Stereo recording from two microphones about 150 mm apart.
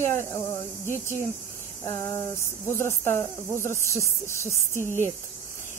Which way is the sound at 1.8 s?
25° left (ahead or behind).